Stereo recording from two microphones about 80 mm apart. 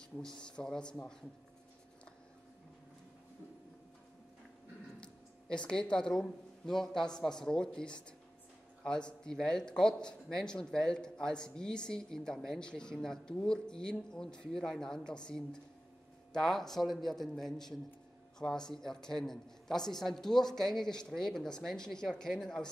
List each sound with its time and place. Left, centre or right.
0.4 s speech: centre
5.0 s a man's voice: centre